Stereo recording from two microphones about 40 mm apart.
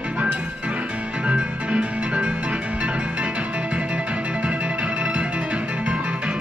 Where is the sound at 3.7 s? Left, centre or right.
Right.